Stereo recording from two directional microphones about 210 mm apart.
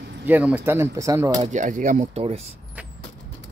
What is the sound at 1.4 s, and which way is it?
Speech, 35° right (ahead or behind).